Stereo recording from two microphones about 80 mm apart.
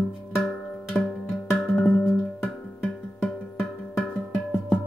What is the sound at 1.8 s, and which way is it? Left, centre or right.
Music, centre.